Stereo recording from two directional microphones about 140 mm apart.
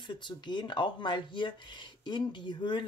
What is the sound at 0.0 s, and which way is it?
Speech, 35° left (ahead or behind).